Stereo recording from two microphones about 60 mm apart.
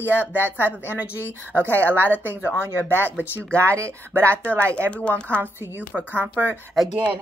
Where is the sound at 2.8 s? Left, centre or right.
Right.